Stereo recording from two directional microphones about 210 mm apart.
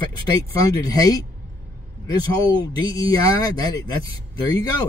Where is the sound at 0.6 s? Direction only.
20° left (ahead or behind).